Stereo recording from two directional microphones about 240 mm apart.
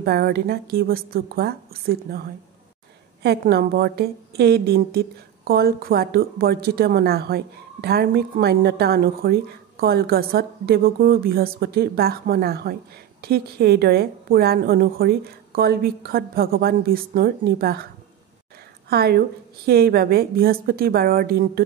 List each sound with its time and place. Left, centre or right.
0.0 s a woman's voice: right
18.9 s a woman's voice: right